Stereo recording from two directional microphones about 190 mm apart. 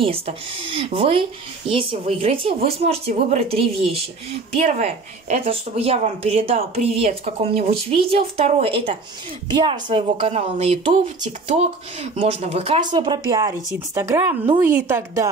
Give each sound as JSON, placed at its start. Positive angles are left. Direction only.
{"t": 0.0, "sound": "speech", "side_deg": -30}
{"t": 4.6, "sound": "a woman's voice", "side_deg": -35}